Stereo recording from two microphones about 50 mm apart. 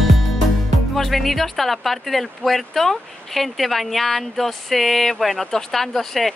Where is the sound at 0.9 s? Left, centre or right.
Centre.